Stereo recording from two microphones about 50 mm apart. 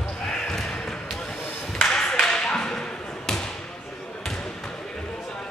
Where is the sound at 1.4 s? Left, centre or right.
Left.